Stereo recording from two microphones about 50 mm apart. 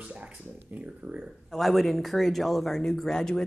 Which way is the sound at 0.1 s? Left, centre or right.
Right.